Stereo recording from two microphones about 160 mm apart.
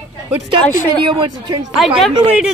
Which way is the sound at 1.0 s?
30° right (ahead or behind).